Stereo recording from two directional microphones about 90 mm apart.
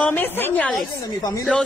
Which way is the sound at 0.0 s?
20° left (ahead or behind).